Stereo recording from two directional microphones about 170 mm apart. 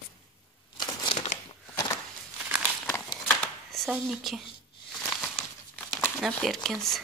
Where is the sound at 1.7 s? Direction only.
25° left (ahead or behind).